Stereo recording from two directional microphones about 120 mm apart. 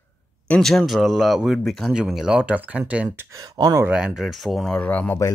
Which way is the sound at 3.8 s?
5° right (ahead or behind).